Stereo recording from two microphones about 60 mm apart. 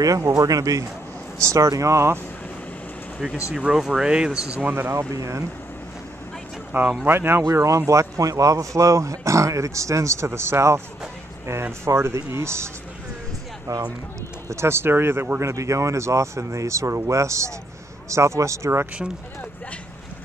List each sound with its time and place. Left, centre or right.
0.0 s speech: right
3.7 s speech: centre
4.6 s speech: right
4.9 s speech: right
6.7 s speech: right
7.4 s speech: right
11.8 s speech: right
13.7 s speech: right
14.5 s speech: right
15.5 s speech: right